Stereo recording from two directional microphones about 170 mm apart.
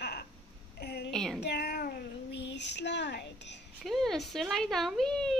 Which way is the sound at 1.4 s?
70° left (ahead or behind).